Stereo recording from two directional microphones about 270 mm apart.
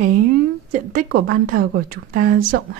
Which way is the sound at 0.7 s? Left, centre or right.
Right.